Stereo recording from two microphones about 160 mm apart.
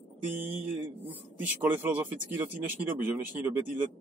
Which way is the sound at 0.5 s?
10° right (ahead or behind).